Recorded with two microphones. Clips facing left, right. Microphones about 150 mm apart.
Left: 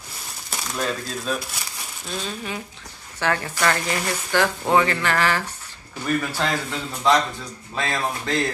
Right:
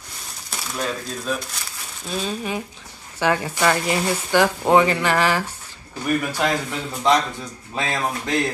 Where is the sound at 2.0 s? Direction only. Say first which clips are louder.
Right 4 dB; 10° right (ahead or behind).